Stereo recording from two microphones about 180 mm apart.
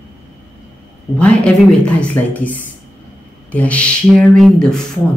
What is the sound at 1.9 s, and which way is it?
A woman's voice, 10° left (ahead or behind).